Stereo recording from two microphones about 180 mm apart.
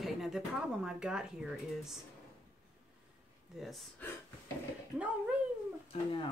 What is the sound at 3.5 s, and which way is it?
Speech, centre (ahead or behind).